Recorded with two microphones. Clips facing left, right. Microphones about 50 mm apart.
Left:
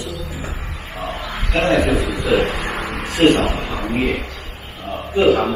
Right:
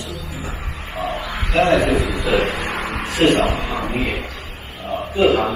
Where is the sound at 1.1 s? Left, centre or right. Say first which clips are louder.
Right 1 dB; centre.